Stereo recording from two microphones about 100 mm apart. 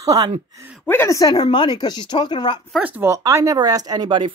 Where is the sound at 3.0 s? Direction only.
30° right (ahead or behind); by 4.3 s 50° right (ahead or behind).